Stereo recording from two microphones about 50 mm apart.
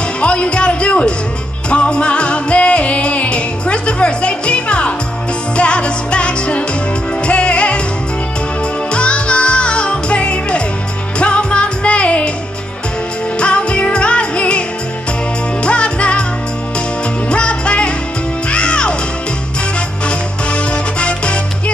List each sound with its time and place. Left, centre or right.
0.2 s music: left
8.9 s music: left
13.4 s music: left
15.6 s music: left
17.3 s music: left
20.1 s music: left